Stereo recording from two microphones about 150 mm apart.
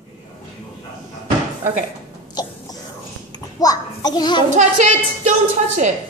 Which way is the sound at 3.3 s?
25° left (ahead or behind).